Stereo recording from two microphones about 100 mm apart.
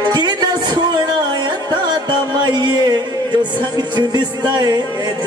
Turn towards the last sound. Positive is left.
turn(degrees=-45)  # may be behind; listen again after turning